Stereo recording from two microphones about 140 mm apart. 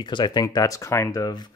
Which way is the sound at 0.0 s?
30° left (ahead or behind).